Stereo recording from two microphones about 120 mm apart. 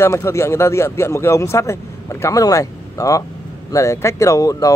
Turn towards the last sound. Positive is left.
turn(degrees=25)  # may be behind; listen again after turning